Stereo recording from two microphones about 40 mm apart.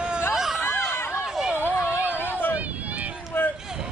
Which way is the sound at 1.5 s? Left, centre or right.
Left.